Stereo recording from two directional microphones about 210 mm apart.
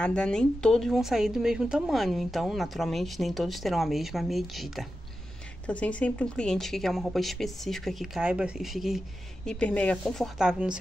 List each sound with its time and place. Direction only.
0.0 s speech: 5° left (ahead or behind)